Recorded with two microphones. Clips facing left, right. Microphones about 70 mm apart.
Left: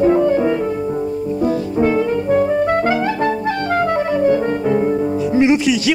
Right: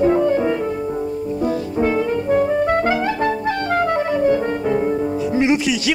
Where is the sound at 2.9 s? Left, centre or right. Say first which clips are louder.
Left 2 dB; left.